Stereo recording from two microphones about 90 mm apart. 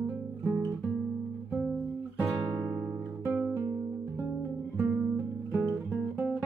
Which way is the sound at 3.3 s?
25° right (ahead or behind).